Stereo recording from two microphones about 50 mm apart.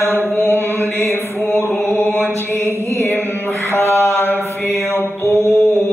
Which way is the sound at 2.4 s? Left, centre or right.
Left.